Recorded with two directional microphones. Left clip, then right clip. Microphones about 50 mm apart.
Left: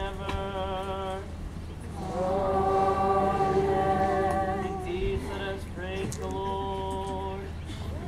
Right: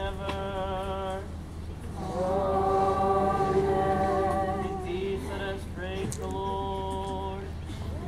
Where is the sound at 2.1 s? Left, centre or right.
Left.